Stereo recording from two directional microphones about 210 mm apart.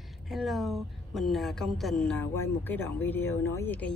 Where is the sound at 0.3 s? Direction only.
Centre (ahead or behind).